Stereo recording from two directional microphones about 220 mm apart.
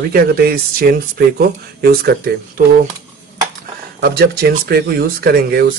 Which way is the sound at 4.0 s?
45° right (ahead or behind).